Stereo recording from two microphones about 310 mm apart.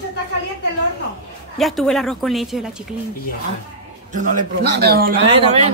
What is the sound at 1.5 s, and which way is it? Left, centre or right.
A woman's voice, centre.